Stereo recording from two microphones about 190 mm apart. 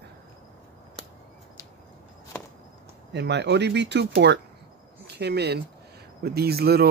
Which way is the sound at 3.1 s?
65° right (ahead or behind).